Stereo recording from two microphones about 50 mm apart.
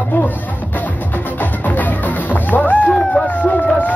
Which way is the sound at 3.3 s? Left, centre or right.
Left.